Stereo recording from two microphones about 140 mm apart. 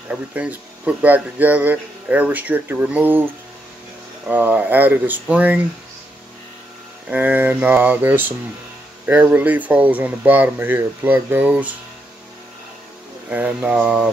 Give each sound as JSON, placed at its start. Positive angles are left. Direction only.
{"t": 0.1, "sound": "speech", "side_deg": -10}
{"t": 4.3, "sound": "speech", "side_deg": -10}
{"t": 7.1, "sound": "speech", "side_deg": -10}
{"t": 13.3, "sound": "speech", "side_deg": -10}